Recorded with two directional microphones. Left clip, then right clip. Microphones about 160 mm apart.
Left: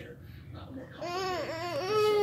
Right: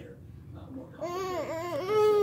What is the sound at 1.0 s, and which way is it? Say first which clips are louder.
Babbling: even; 40° right (ahead or behind).